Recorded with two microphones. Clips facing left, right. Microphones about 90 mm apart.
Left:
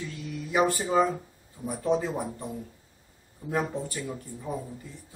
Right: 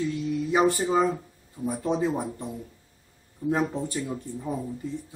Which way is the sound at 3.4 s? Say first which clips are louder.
Right 4 dB; 20° right (ahead or behind).